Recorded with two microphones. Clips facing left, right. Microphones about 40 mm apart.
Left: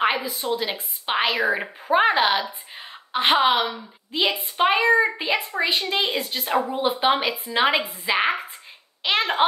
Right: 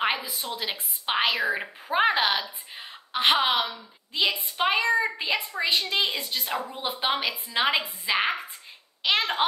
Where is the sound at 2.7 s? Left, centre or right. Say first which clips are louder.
Left 3 dB; centre.